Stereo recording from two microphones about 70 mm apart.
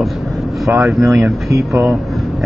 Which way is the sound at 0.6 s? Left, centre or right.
Right.